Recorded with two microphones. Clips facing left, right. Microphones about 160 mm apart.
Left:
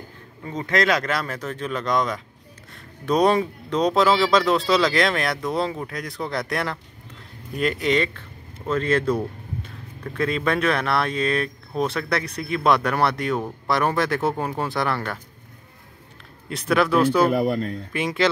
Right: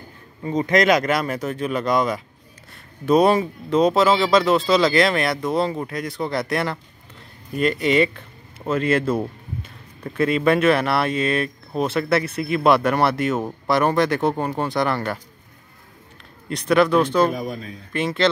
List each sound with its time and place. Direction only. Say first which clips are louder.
0.5 s speech: right 5 dB; 15° right (ahead or behind)
10.1 s speech: right 5 dB; 5° right (ahead or behind)
16.4 s speech: right 3 dB; centre (ahead or behind)
17.3 s speech: left 6 dB; 65° left (ahead or behind)
17.9 s speech: right 2 dB; 10° left (ahead or behind)